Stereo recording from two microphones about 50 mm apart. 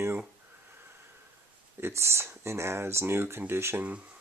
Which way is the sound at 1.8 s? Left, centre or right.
Right.